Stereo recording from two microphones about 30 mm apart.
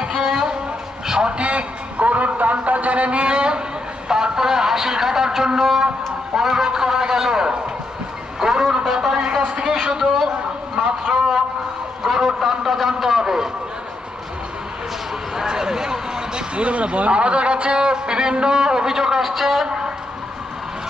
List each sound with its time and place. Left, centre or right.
0.2 s a sound: centre
1.4 s a man's voice: right
4.1 s a man's voice: centre
11.1 s a man's voice: centre
12.0 s a sound: centre
12.4 s speech: centre
15.3 s speech: right
16.5 s a man's voice: right; by 19.6 s centre
19.6 s a sound: right